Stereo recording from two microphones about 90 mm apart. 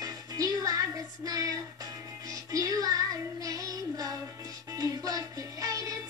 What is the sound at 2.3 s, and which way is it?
Child singing, 40° right (ahead or behind).